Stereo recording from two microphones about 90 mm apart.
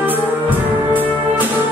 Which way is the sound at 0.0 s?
20° right (ahead or behind).